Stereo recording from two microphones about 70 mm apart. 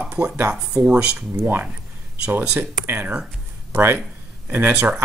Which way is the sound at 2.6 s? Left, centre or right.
Right.